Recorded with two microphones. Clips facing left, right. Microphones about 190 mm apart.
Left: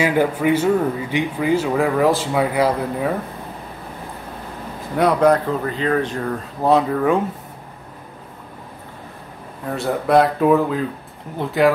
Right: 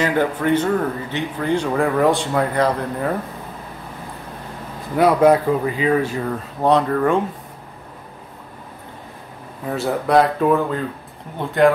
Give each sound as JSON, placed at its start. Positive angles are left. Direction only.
{"t": 0.0, "sound": "speech", "side_deg": 10}
{"t": 4.9, "sound": "speech", "side_deg": -5}
{"t": 9.7, "sound": "speech", "side_deg": 0}